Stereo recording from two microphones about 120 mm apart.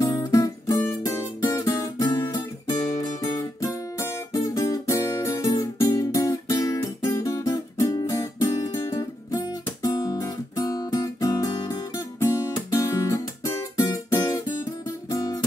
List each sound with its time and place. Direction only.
0.0 s guitar: 25° left (ahead or behind)
1.0 s music: 25° left (ahead or behind)
3.6 s music: 25° left (ahead or behind)
9.8 s guitar: 30° left (ahead or behind)
15.0 s music: 25° left (ahead or behind)